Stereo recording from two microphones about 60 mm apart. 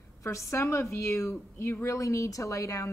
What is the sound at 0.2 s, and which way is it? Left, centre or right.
Speech, left.